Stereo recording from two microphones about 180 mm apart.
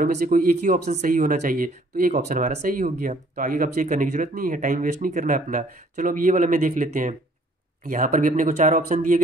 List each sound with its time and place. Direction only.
0.0 s speech: 50° right (ahead or behind)